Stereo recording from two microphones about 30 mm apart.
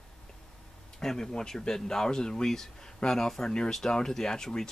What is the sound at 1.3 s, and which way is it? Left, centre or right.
Speech, left.